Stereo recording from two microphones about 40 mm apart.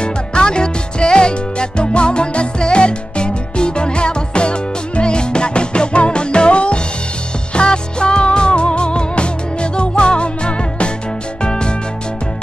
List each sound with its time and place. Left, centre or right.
0.0 s music: left